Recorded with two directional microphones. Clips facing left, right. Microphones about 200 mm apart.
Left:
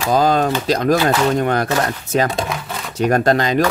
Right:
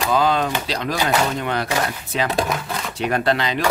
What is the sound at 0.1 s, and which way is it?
Speech, 45° left (ahead or behind).